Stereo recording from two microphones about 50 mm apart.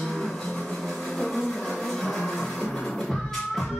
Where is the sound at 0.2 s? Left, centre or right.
Centre.